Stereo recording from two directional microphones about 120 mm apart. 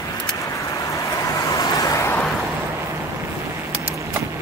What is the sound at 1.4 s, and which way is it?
Vehicle, 25° left (ahead or behind).